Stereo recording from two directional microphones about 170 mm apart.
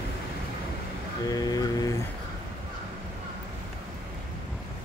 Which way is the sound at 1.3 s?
20° left (ahead or behind).